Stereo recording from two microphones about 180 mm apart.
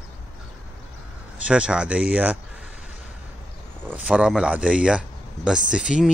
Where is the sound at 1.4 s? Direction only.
5° right (ahead or behind).